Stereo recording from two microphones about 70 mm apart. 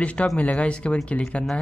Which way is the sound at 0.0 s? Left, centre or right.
Centre.